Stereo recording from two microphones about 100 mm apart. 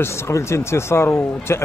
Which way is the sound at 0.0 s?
25° left (ahead or behind).